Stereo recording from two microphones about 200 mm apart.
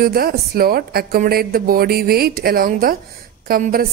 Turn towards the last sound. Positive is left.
turn(degrees=-45)  # may be behind; listen again after turning